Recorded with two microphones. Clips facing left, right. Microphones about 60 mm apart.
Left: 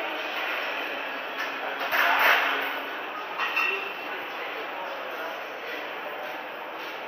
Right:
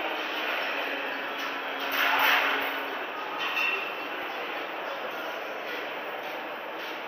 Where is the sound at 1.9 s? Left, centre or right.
Left.